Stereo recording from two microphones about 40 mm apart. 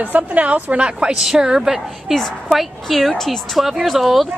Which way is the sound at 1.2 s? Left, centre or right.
Centre.